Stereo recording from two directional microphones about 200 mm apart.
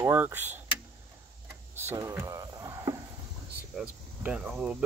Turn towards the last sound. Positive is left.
turn(degrees=0)  # may be behind; listen again after turning